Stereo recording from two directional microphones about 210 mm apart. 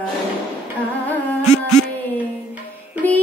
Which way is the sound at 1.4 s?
90° left.